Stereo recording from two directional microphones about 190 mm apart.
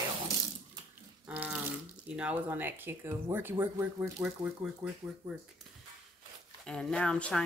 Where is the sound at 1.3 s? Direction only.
5° right (ahead or behind).